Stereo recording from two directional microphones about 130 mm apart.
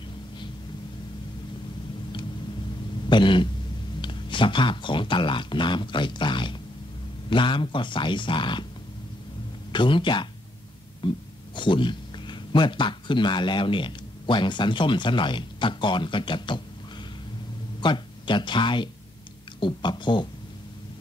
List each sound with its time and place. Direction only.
3.1 s a sound: 40° left (ahead or behind)
4.0 s speech: 40° left (ahead or behind)
9.7 s speech: 40° left (ahead or behind)
17.7 s speech: 35° left (ahead or behind)